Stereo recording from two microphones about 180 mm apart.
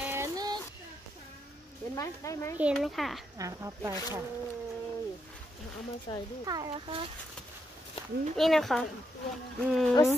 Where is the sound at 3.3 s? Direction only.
15° right (ahead or behind).